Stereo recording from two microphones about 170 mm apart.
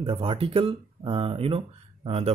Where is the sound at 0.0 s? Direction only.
30° right (ahead or behind).